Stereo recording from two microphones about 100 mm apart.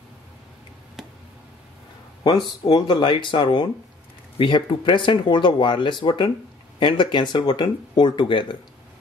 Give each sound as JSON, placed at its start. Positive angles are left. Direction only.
{"t": 2.2, "sound": "speech", "side_deg": 45}